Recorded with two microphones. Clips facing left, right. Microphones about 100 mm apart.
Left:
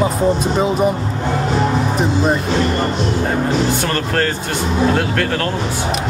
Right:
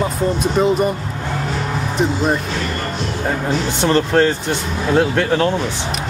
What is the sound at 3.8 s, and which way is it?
Speech, 20° right (ahead or behind).